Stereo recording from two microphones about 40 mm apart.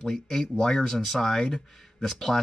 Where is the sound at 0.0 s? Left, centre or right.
Centre.